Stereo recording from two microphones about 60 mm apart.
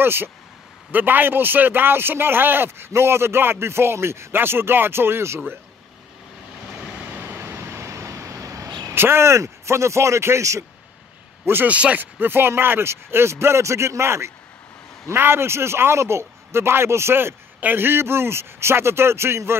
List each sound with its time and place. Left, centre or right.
0.0 s a man's voice: right
7.3 s a sound: right
8.9 s a man's voice: right
11.6 s a man's voice: right
12.2 s a man's voice: right